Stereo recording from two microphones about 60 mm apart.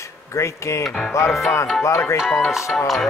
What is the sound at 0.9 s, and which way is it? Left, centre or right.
Speech, centre.